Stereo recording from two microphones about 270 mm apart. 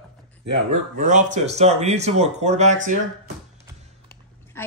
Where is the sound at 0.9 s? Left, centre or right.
Right.